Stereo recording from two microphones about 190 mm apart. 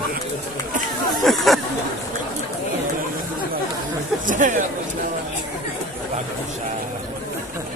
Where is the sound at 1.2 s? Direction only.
Centre (ahead or behind).